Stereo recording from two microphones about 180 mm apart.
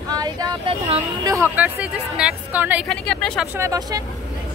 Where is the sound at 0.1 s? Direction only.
20° right (ahead or behind).